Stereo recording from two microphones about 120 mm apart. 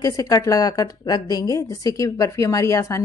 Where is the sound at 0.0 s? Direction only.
30° left (ahead or behind).